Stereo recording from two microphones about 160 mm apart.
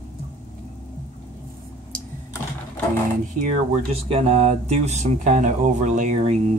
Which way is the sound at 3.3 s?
40° right (ahead or behind).